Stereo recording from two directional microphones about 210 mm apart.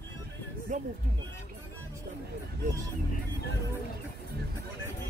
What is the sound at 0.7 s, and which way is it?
Speech, 35° right (ahead or behind).